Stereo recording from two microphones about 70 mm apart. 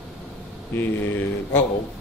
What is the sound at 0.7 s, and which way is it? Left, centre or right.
Speech, left.